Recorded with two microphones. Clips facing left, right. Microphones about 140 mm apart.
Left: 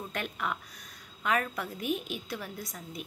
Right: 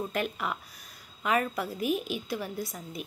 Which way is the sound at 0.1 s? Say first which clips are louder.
Right 3 dB; 5° right (ahead or behind).